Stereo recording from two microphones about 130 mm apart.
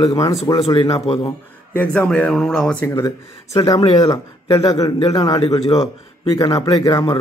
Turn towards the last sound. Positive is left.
turn(degrees=40)  # may be behind; listen again after turning